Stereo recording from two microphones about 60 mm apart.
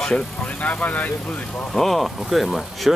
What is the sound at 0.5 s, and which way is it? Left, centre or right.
Speech, left.